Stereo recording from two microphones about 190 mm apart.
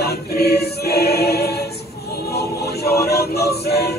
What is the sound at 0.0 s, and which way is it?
Choir, 60° left (ahead or behind).